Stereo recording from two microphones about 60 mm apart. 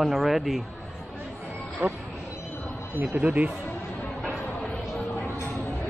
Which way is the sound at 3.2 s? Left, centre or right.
Right.